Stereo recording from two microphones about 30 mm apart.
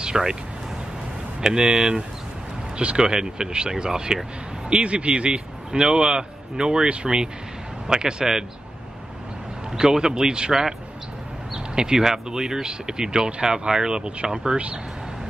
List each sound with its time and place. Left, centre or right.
0.1 s speech: centre
1.4 s a man's voice: right
4.6 s a man's voice: right
5.7 s a man's voice: right
9.8 s speech: right